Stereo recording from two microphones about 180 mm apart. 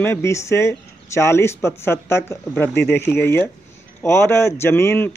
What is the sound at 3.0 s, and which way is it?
Speech, 10° left (ahead or behind).